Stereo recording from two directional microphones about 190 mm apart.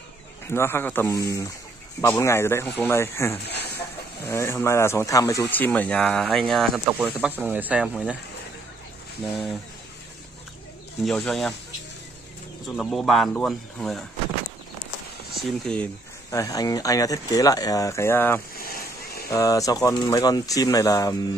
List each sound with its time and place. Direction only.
0.5 s speech: 10° left (ahead or behind)
3.4 s a sound: 60° left (ahead or behind)
4.2 s speech: 15° left (ahead or behind); by 8.2 s 5° right (ahead or behind)
9.2 s speech: centre (ahead or behind)
11.1 s speech: centre (ahead or behind)
12.6 s speech: centre (ahead or behind)
15.3 s speech: centre (ahead or behind)
18.6 s a sound: 50° left (ahead or behind)
19.2 s speech: 15° left (ahead or behind)